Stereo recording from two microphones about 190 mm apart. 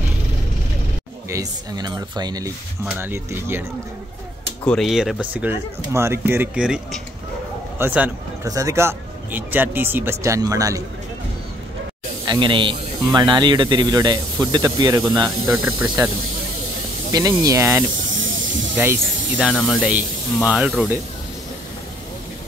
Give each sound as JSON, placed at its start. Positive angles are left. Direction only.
{"t": 1.3, "sound": "speech", "side_deg": -20}
{"t": 4.6, "sound": "speech", "side_deg": 0}
{"t": 12.3, "sound": "speech", "side_deg": -25}
{"t": 15.4, "sound": "speech", "side_deg": -5}
{"t": 17.1, "sound": "speech", "side_deg": -20}